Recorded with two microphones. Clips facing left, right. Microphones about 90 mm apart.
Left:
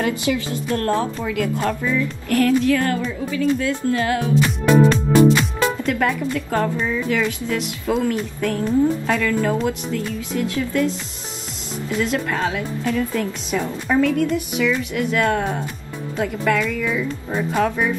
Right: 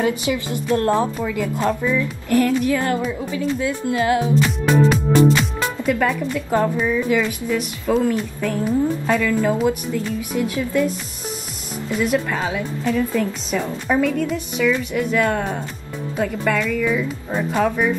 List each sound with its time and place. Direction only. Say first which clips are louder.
0.0 s speech: right 1 dB; 20° right (ahead or behind)
2.2 s a woman's voice: left 1 dB; 15° right (ahead or behind)
4.4 s music: left 2 dB; centre (ahead or behind)
6.5 s a woman's voice: right 4 dB; 15° right (ahead or behind)
11.9 s a woman's voice: right 2 dB; 5° right (ahead or behind)